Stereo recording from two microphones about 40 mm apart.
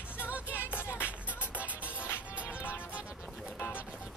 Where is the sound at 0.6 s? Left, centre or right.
Left.